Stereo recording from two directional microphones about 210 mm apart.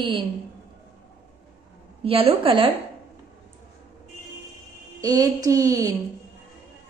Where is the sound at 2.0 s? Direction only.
25° right (ahead or behind).